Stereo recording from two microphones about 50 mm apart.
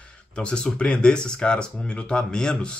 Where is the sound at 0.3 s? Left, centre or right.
Centre.